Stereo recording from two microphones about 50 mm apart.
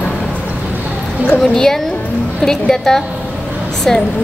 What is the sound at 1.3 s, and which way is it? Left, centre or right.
A woman's voice, centre.